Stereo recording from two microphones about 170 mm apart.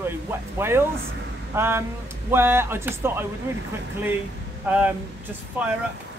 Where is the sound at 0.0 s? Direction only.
15° right (ahead or behind).